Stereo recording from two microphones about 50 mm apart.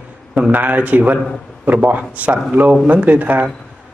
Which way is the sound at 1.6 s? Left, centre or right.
Right.